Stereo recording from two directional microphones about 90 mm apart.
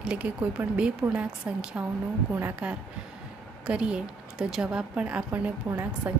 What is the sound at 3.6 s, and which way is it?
A woman's voice, 10° right (ahead or behind).